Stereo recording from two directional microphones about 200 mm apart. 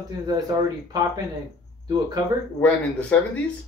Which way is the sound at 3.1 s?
5° left (ahead or behind).